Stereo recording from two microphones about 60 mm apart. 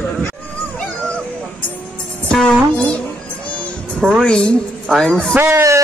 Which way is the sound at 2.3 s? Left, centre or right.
Centre.